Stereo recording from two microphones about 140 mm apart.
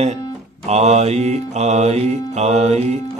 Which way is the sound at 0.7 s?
50° right (ahead or behind).